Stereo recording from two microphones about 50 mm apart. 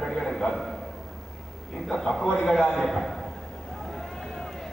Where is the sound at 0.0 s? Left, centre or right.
Centre.